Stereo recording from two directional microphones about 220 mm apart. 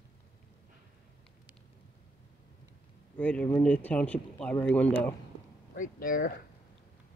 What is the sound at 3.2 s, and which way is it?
Speech, 5° left (ahead or behind).